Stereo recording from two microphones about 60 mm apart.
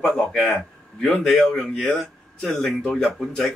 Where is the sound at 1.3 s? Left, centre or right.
Centre.